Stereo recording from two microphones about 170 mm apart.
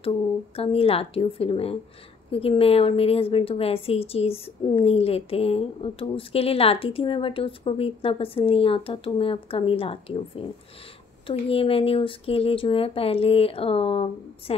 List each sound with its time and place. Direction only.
0.6 s a woman's voice: 35° left (ahead or behind)